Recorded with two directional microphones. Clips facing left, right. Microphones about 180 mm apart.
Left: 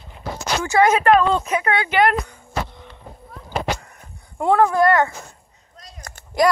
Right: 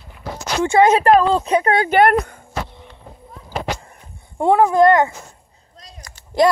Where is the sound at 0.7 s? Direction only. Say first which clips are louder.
Right 3 dB; 25° right (ahead or behind); by 2.4 s 55° right (ahead or behind).